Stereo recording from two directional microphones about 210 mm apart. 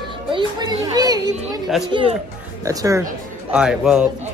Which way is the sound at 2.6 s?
15° right (ahead or behind).